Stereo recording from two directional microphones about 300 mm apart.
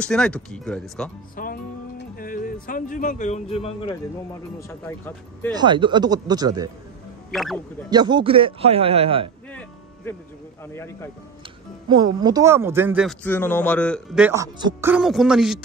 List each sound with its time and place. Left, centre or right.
0.0 s speech: centre
1.3 s music: left
4.6 s speech: centre
5.5 s a man's voice: centre
7.3 s speech: centre
7.9 s a man's voice: centre
9.5 s music: centre
10.7 s speech: centre
12.0 s speech: centre